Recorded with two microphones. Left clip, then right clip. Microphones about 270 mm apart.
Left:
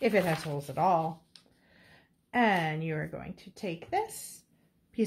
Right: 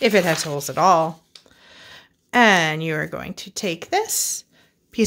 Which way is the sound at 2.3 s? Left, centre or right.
Right.